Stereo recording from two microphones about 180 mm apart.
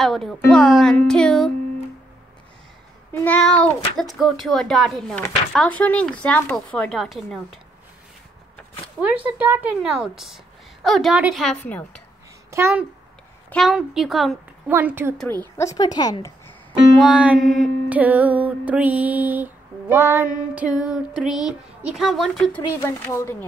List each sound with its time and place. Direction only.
0.0 s a woman's voice: centre (ahead or behind)
3.1 s a woman's voice: 5° left (ahead or behind)
9.0 s a woman's voice: 5° right (ahead or behind)
11.4 s speech: 5° left (ahead or behind)
12.4 s a child's voice: 15° right (ahead or behind)
13.5 s a woman's voice: centre (ahead or behind)
14.7 s music: 10° right (ahead or behind)
15.1 s speech: 10° left (ahead or behind)
17.0 s music: 5° right (ahead or behind)
20.5 s a woman's voice: 5° right (ahead or behind)
22.8 s speech: 15° left (ahead or behind)